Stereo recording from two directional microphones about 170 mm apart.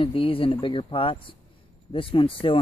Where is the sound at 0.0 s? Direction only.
30° left (ahead or behind).